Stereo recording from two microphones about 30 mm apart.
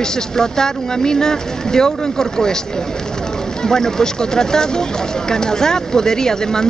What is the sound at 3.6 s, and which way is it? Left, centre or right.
Speech, centre.